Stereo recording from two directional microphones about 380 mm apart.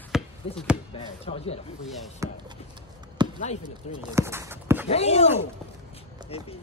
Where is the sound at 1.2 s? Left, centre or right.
Centre.